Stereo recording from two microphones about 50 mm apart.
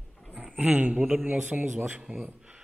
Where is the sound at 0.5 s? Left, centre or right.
Right.